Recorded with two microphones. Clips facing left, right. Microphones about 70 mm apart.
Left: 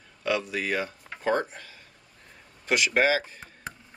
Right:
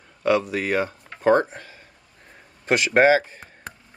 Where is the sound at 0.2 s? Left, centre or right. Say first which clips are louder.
Right 7 dB; right.